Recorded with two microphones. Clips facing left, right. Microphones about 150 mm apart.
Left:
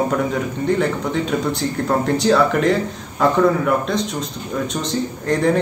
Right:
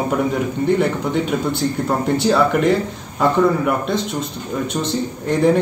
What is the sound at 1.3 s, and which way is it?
A man's voice, 5° right (ahead or behind).